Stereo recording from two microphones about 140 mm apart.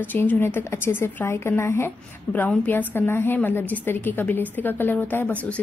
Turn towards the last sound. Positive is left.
turn(degrees=10)  # may be behind; listen again after turning